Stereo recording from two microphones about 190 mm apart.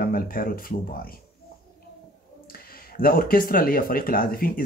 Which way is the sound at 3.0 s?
50° left (ahead or behind).